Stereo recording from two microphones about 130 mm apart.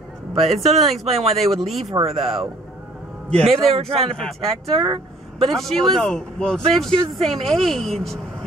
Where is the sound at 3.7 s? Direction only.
50° right (ahead or behind).